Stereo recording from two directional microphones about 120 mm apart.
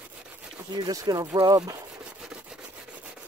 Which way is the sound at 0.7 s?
35° right (ahead or behind).